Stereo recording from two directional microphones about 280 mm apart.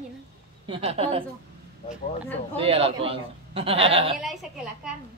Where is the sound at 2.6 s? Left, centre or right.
Centre.